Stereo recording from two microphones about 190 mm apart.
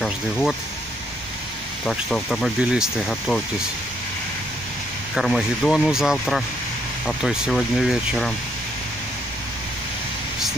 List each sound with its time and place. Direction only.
0.0 s speech: centre (ahead or behind)
1.9 s speech: centre (ahead or behind)
5.1 s speech: centre (ahead or behind)